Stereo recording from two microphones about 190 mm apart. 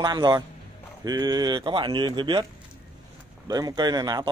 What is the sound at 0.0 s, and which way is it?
Speech, 20° right (ahead or behind).